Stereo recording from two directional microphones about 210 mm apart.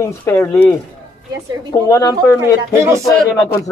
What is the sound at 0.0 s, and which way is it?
Speech, 10° left (ahead or behind).